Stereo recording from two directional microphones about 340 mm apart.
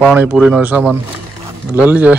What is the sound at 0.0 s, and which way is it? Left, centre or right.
Speech, centre.